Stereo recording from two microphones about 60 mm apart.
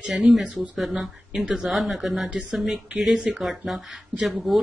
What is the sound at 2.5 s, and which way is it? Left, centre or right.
Speech, centre.